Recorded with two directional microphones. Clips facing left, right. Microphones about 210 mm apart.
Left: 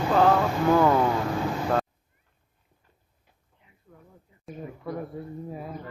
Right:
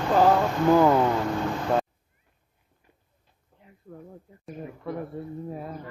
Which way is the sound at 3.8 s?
45° right (ahead or behind).